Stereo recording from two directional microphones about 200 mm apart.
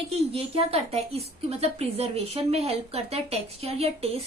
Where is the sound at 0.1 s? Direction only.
30° right (ahead or behind).